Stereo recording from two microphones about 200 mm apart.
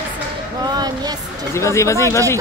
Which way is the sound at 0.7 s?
20° right (ahead or behind).